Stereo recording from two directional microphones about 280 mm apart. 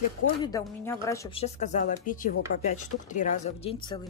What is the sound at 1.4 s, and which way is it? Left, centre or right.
Speech, left.